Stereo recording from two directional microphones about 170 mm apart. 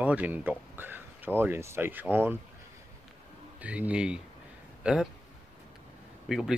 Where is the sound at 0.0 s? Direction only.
10° right (ahead or behind).